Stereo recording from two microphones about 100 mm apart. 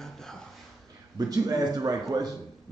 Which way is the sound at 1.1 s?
40° right (ahead or behind).